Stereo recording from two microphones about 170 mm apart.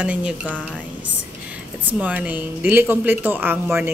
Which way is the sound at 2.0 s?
10° right (ahead or behind).